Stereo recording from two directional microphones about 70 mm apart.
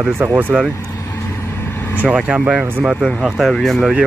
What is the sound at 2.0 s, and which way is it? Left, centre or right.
Speech, centre.